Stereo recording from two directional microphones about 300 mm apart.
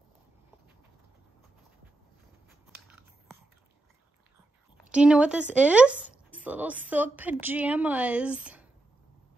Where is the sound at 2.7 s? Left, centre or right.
Centre.